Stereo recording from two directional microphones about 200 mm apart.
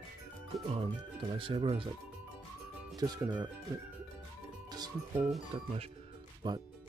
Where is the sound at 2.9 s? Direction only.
20° right (ahead or behind).